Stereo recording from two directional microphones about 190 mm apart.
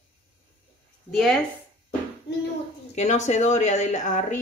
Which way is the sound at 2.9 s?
35° left (ahead or behind).